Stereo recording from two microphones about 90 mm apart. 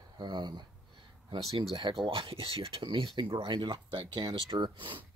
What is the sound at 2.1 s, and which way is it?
Speech, 80° right.